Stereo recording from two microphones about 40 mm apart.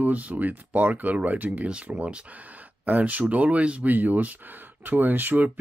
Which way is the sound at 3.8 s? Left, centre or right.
Right.